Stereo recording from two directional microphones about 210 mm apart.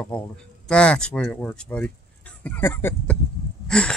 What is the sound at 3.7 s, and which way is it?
Gasp, 5° left (ahead or behind).